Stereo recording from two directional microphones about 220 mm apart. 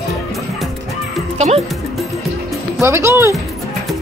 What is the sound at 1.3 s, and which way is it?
Speech, 30° right (ahead or behind).